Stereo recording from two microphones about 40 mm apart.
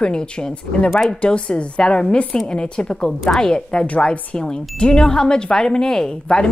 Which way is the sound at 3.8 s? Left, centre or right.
Left.